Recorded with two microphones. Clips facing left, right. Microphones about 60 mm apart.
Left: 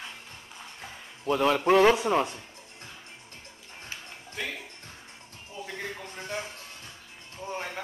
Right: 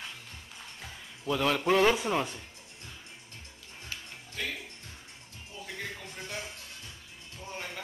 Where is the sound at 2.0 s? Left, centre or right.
Left.